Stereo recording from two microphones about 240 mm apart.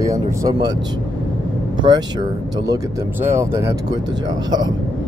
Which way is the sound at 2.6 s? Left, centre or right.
Centre.